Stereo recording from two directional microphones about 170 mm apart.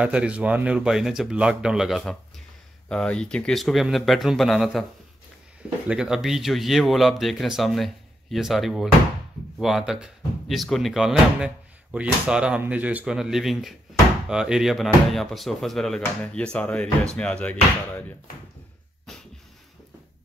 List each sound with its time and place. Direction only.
0.0 s speech: 5° right (ahead or behind)
5.9 s speech: 5° right (ahead or behind)